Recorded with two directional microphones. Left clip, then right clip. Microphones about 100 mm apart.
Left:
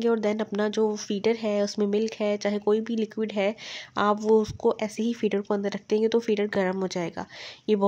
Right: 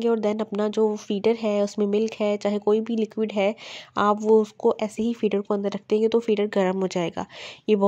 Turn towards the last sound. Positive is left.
turn(degrees=-45)  # may be behind; listen again after turning